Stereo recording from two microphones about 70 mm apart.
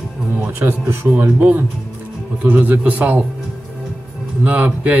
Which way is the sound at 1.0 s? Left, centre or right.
Right.